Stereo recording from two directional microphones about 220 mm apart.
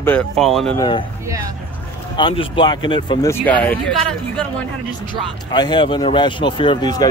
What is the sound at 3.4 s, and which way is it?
Speech, 5° left (ahead or behind).